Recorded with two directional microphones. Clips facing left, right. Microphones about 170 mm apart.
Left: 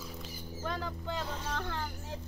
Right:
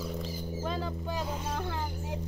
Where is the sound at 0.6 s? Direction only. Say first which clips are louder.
Right 2 dB; 20° right (ahead or behind).